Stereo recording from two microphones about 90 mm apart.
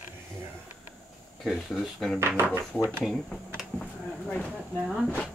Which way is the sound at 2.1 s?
25° right (ahead or behind).